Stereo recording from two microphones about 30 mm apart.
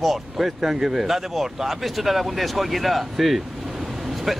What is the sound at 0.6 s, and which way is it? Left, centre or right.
Speech, centre.